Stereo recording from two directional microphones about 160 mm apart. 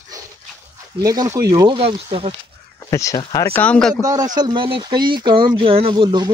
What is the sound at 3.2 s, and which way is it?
Speech, 30° left (ahead or behind).